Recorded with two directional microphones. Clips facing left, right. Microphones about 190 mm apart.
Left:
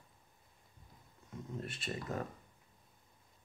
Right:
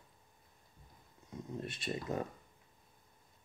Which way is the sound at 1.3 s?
15° right (ahead or behind).